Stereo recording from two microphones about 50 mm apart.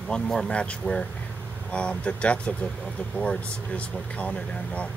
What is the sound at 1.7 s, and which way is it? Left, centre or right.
Speech, left.